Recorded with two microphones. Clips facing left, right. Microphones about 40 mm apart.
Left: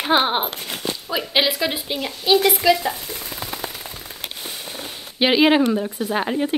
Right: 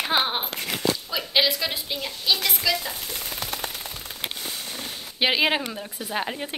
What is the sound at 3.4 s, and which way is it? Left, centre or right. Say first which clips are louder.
Machine gun: left 2 dB; left.